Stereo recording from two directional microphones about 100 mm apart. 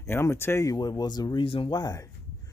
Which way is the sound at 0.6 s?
40° left (ahead or behind).